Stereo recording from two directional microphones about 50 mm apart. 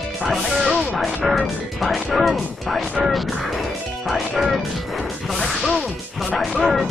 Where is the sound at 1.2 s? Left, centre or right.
Centre.